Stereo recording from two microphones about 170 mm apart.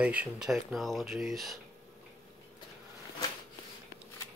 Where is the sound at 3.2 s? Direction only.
20° left (ahead or behind).